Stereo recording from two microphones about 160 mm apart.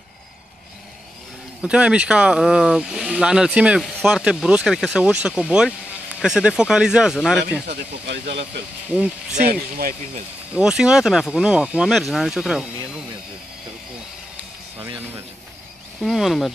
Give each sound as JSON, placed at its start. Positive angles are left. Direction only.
{"t": 1.6, "sound": "speech", "side_deg": -5}
{"t": 7.6, "sound": "speech", "side_deg": -85}
{"t": 8.8, "sound": "speech", "side_deg": -5}
{"t": 9.4, "sound": "speech", "side_deg": -65}
{"t": 10.5, "sound": "speech", "side_deg": -5}
{"t": 16.0, "sound": "speech", "side_deg": 0}